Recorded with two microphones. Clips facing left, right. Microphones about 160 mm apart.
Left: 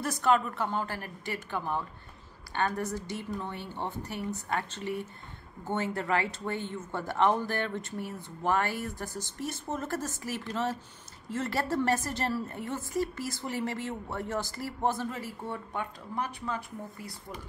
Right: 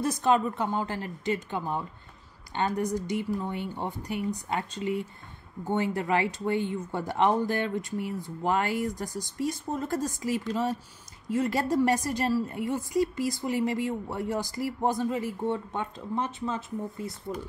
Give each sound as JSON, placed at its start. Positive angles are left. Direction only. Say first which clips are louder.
{"t": 0.0, "sound": "a woman's voice", "louder": "right 2 dB", "side_deg": -20}